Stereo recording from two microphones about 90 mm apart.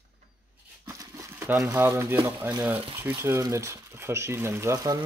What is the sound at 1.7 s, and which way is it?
Speech, 25° right (ahead or behind).